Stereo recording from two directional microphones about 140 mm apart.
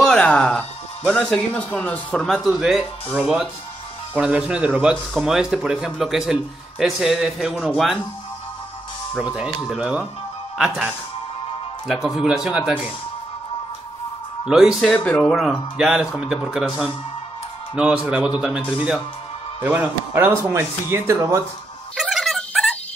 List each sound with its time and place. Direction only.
0.0 s music: 5° left (ahead or behind)
1.0 s speech: 5° left (ahead or behind)
9.2 s speech: 5° right (ahead or behind)
11.9 s speech: centre (ahead or behind)
14.4 s speech: 5° right (ahead or behind)
19.6 s speech: 10° right (ahead or behind)
21.9 s music: centre (ahead or behind)